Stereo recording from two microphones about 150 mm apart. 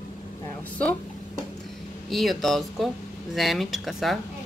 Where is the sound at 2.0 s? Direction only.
Centre (ahead or behind).